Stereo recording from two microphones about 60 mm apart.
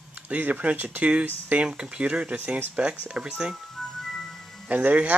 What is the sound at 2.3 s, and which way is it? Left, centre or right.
Speech, right.